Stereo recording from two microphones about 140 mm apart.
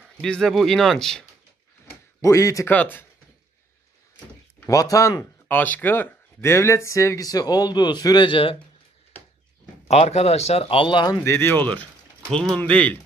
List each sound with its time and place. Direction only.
0.0 s speech: 5° left (ahead or behind)
1.9 s a sound: 20° left (ahead or behind)
2.7 s speech: 10° left (ahead or behind)
4.6 s speech: 25° left (ahead or behind)
9.8 s speech: 50° left (ahead or behind); by 11.2 s 30° left (ahead or behind)
11.2 s speech: 15° left (ahead or behind)